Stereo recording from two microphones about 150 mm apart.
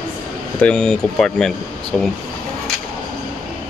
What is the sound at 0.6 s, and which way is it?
Speech, 5° left (ahead or behind).